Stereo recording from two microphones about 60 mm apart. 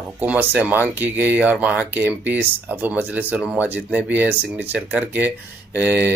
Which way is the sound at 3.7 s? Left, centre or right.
Right.